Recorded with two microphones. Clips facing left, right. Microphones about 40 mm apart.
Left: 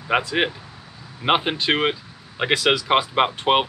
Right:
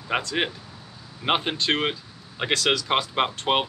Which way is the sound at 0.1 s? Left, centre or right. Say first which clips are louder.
Left 5 dB; centre.